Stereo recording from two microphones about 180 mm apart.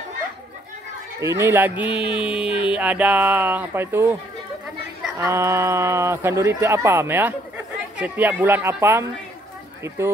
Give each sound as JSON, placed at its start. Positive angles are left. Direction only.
{"t": 1.2, "sound": "speech", "side_deg": -15}
{"t": 1.8, "sound": "a sound", "side_deg": 25}
{"t": 2.1, "sound": "a sound", "side_deg": -5}
{"t": 2.4, "sound": "music", "side_deg": 30}
{"t": 2.7, "sound": "speech", "side_deg": -5}
{"t": 5.1, "sound": "speech", "side_deg": -15}